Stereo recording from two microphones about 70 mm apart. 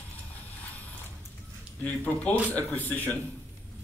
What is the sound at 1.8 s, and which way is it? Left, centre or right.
Speech, left.